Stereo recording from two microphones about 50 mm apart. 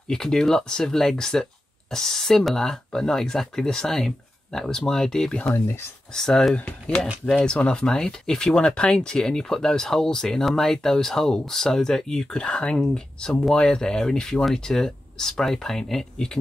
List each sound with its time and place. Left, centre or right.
0.1 s speech: centre
6.5 s speech: left